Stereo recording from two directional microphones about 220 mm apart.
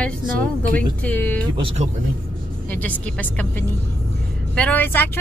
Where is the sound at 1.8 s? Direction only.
30° right (ahead or behind).